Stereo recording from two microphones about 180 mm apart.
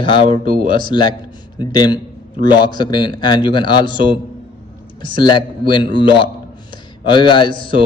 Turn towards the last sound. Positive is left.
turn(degrees=30)  # may be behind; listen again after turning